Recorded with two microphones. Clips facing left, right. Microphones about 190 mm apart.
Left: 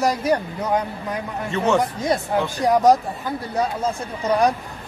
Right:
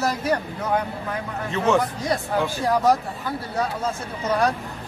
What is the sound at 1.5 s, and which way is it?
Speech, centre (ahead or behind).